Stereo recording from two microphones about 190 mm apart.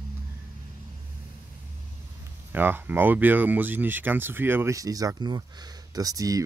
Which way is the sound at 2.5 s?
10° right (ahead or behind).